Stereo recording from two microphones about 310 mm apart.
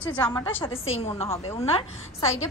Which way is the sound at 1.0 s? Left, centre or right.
Centre.